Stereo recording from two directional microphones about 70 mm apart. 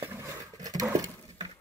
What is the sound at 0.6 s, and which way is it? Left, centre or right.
Patter, right.